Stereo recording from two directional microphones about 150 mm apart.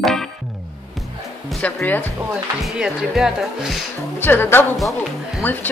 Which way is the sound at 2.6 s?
Centre (ahead or behind).